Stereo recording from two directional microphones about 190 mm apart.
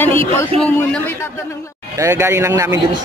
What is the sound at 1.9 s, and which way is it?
Speech, 15° right (ahead or behind).